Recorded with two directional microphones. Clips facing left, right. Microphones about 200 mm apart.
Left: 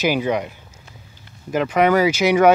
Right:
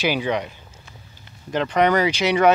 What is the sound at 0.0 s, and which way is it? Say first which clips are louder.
Speech: left 3 dB; 5° left (ahead or behind).